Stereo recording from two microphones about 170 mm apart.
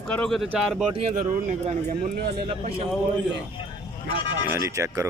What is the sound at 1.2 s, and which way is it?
Speech, 45° right (ahead or behind).